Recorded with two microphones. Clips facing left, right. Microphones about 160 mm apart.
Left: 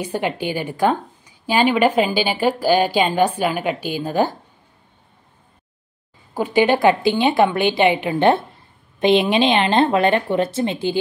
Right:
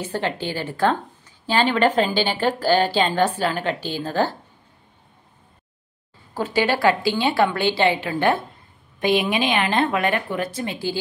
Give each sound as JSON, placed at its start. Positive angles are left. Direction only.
{"t": 0.0, "sound": "a woman's voice", "side_deg": 15}
{"t": 6.3, "sound": "a woman's voice", "side_deg": 15}